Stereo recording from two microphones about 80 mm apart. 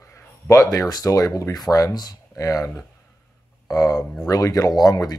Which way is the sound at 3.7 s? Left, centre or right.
Left.